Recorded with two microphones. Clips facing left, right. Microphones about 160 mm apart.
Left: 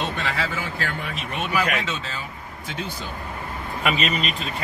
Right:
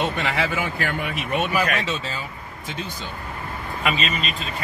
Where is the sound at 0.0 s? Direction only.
15° right (ahead or behind).